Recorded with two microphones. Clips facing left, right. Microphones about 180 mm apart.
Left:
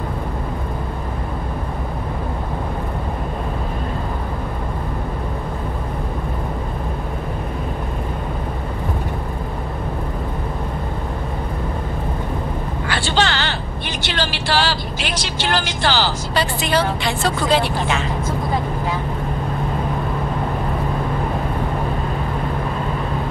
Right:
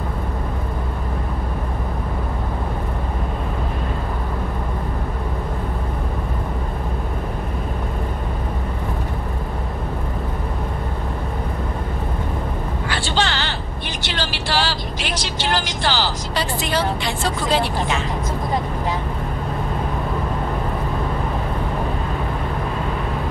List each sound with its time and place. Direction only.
12.8 s vehicle: 65° left (ahead or behind)